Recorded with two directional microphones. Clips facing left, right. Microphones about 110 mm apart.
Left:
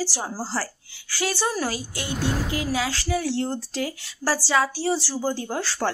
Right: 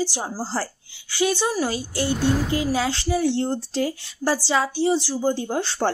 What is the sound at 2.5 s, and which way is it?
Speech, 30° right (ahead or behind).